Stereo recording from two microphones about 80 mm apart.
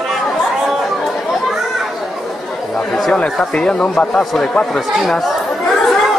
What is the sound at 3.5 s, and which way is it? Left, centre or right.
Speech, centre.